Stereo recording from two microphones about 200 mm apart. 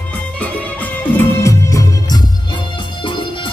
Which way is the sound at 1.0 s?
10° left (ahead or behind).